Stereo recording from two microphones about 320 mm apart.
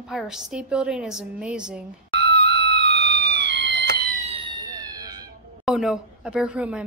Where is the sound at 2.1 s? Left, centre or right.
Right; by 5.1 s centre.